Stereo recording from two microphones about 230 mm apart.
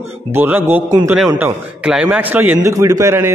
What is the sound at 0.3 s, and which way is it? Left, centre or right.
A man's voice, centre.